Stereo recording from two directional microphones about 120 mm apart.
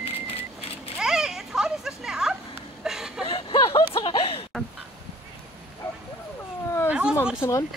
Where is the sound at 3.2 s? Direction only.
45° left (ahead or behind).